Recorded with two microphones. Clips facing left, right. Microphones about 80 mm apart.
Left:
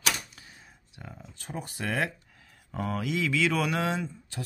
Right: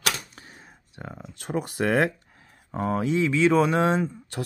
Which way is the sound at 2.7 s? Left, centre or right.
Right.